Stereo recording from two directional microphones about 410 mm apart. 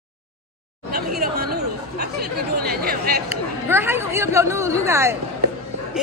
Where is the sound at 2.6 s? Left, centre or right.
Right.